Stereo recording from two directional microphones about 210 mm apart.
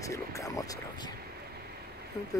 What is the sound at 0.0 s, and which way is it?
Speech, 15° left (ahead or behind).